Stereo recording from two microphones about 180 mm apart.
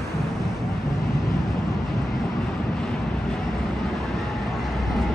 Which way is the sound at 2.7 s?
5° left (ahead or behind).